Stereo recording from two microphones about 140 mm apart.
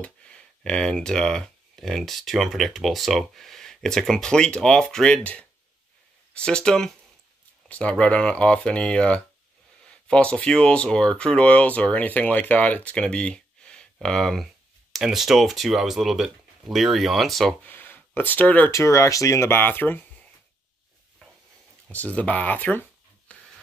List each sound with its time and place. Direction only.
0.0 s speech: 5° left (ahead or behind)
17.6 s speech: 15° left (ahead or behind)
18.7 s speech: 20° left (ahead or behind)
21.9 s speech: 10° left (ahead or behind)
23.3 s a sound: 10° left (ahead or behind)